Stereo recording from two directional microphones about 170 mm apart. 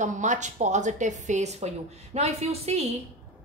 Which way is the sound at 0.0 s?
45° right (ahead or behind).